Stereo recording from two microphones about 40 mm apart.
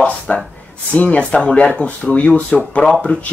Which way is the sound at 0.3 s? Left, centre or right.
Left.